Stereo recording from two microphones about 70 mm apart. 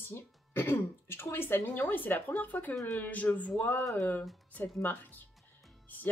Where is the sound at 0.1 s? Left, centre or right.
Left.